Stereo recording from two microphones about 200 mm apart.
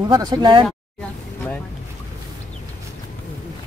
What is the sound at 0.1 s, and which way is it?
Speech, 20° right (ahead or behind).